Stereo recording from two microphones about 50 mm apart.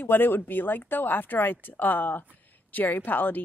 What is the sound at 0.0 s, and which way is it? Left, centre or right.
A woman's voice, left.